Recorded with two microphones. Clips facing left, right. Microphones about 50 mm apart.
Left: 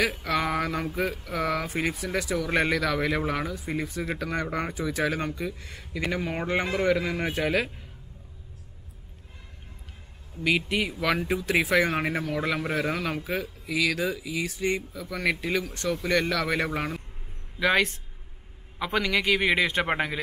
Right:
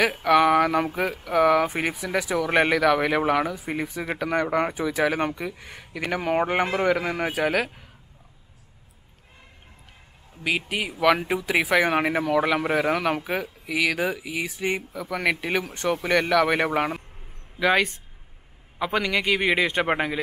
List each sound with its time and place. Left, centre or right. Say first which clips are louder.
0.2 s speech: right 9 dB; centre
6.2 s speech: right 9 dB; right
7.3 s a man's voice: right 2 dB; centre
10.4 s speech: left 1 dB; centre
11.1 s speech: right 1 dB; right
13.3 s speech: right 2 dB; centre
15.1 s speech: right 2 dB; right
16.1 s speech: right 5 dB; centre
17.6 s a man's voice: right 2 dB; centre